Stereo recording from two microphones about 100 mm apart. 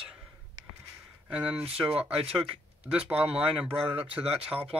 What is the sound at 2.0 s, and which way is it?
Speech, 75° right (ahead or behind).